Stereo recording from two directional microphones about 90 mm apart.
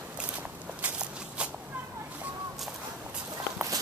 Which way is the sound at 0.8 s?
15° right (ahead or behind).